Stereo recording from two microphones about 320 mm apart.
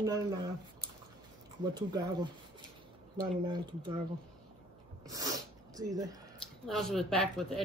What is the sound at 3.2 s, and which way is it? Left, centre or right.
Speech, centre.